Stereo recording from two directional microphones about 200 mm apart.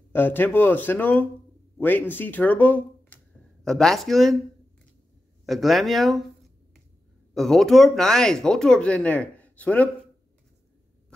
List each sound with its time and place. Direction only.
0.1 s speech: 10° left (ahead or behind)
5.4 s speech: centre (ahead or behind)
7.3 s speech: centre (ahead or behind)